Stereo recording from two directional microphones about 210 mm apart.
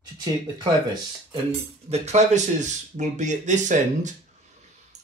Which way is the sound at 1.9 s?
30° right (ahead or behind).